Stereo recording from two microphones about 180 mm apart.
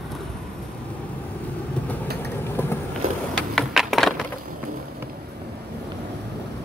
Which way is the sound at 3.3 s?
Centre (ahead or behind).